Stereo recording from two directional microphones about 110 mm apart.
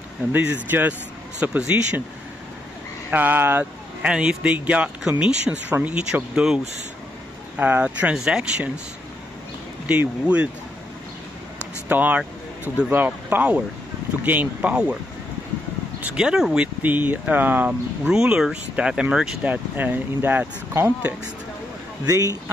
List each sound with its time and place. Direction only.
0.3 s speech: 15° right (ahead or behind)
3.1 s speech: 15° right (ahead or behind)
9.8 s speech: 10° right (ahead or behind)
11.9 s a sound: 15° right (ahead or behind)
12.9 s speech: 15° right (ahead or behind)
16.1 s speech: 10° right (ahead or behind)
22.0 s speech: 35° right (ahead or behind)